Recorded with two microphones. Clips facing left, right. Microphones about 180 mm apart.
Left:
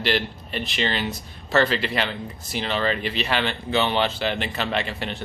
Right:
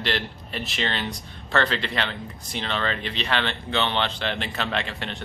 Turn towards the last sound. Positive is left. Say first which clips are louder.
# left 3 dB
turn(degrees=5)  # may be behind; listen again after turning